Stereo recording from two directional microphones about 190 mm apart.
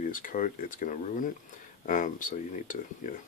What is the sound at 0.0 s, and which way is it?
Speech, 45° left (ahead or behind).